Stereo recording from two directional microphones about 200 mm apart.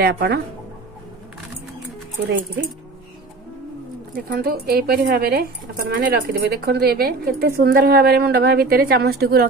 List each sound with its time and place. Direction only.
0.0 s speech: 50° right (ahead or behind)
4.1 s speech: 50° right (ahead or behind)